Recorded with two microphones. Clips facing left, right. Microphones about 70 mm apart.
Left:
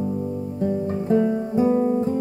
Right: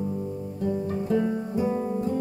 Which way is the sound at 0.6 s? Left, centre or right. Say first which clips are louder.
Left 3 dB; left.